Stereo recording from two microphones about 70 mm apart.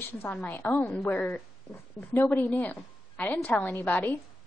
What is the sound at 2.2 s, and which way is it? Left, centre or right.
A woman's voice, left.